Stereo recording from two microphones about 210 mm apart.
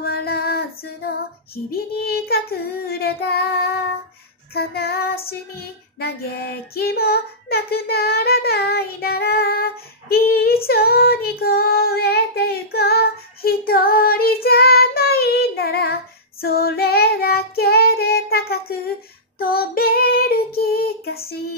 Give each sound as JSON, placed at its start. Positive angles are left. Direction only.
{"t": 0.0, "sound": "female singing", "side_deg": 45}
{"t": 1.7, "sound": "child singing", "side_deg": 45}